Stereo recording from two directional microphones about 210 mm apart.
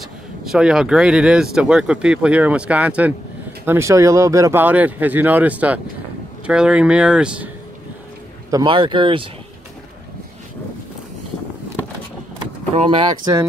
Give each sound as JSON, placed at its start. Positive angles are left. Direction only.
{"t": 0.5, "sound": "speech", "side_deg": -5}
{"t": 8.5, "sound": "speech", "side_deg": -20}
{"t": 12.7, "sound": "speech", "side_deg": -25}